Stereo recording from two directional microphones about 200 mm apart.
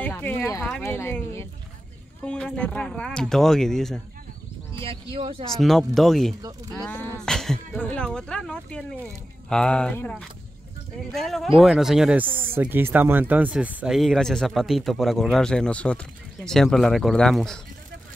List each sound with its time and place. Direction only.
0.0 s speech: 10° left (ahead or behind)
0.7 s a sound: 10° left (ahead or behind)
2.2 s speech: 5° left (ahead or behind)
4.7 s speech: 25° right (ahead or behind)
5.5 s speech: centre (ahead or behind)